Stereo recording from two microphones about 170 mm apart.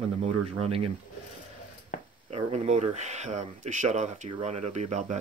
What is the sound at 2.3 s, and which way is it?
Speech, 40° right (ahead or behind).